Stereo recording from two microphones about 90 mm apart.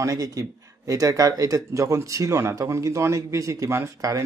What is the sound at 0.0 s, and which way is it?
Speech, 40° right (ahead or behind).